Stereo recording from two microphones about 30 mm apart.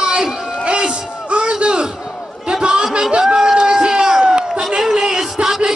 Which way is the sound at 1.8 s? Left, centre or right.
Right.